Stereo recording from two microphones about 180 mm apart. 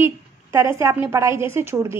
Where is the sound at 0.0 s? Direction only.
15° right (ahead or behind).